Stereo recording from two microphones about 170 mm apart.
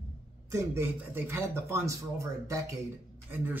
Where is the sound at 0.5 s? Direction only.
15° right (ahead or behind).